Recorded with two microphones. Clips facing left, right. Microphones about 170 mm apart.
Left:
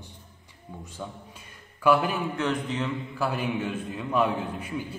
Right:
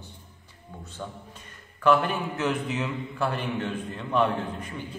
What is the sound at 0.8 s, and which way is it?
A man's voice, 10° left (ahead or behind).